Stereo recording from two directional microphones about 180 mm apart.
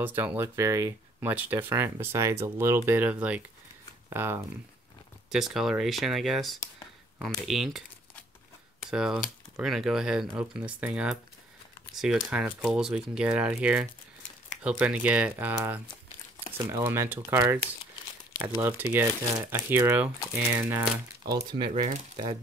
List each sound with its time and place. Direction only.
0.0 s speech: 10° right (ahead or behind)
5.3 s speech: centre (ahead or behind)
18.6 s speech: 10° right (ahead or behind)
21.5 s speech: 25° right (ahead or behind)